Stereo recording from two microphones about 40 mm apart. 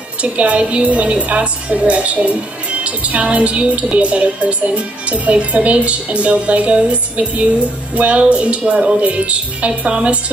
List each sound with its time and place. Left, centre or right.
0.2 s a woman's voice: right